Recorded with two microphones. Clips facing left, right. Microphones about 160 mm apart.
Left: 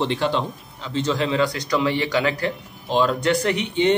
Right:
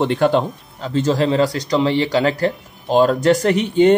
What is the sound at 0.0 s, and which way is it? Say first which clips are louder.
Speech: right 6 dB; 50° right (ahead or behind).